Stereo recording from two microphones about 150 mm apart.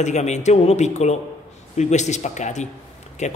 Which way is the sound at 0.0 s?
50° left (ahead or behind).